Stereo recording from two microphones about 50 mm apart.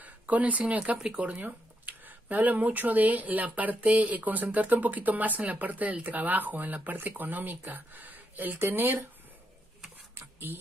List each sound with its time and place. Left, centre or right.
0.0 s speech: right
10.1 s speech: right